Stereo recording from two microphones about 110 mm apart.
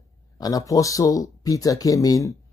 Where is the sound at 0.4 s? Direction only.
30° left (ahead or behind).